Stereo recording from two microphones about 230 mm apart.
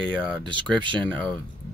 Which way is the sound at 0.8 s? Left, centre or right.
Right.